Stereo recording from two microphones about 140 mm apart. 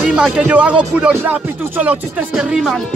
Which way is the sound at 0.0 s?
5° right (ahead or behind).